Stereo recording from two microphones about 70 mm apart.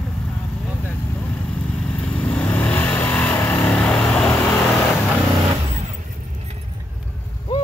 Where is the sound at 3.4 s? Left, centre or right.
Left.